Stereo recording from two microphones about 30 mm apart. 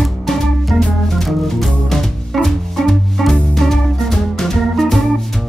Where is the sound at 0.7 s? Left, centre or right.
Centre.